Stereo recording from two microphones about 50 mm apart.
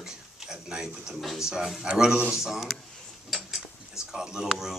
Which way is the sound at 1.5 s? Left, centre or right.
Centre.